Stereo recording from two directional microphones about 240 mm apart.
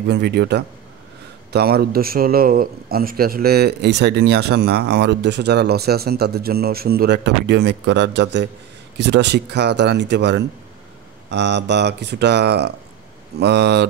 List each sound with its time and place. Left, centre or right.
0.1 s a man's voice: right